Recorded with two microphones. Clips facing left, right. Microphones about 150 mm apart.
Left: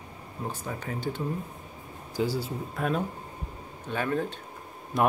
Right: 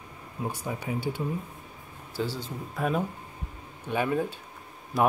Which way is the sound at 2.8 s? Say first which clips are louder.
Right 1 dB; 5° right (ahead or behind).